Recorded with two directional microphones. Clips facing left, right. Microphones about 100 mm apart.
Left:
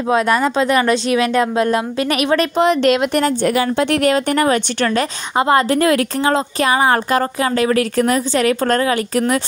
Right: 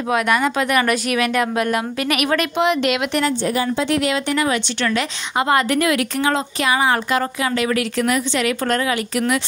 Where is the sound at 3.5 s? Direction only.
65° left (ahead or behind).